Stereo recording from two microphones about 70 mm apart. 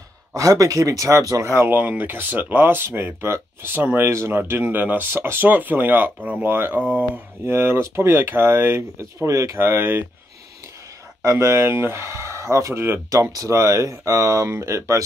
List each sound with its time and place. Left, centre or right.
0.3 s speech: right
1.7 s speech: right
9.6 s speech: right
11.2 s speech: right
13.1 s speech: right